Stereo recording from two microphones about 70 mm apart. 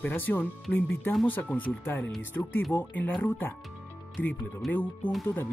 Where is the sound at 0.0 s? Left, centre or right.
Left.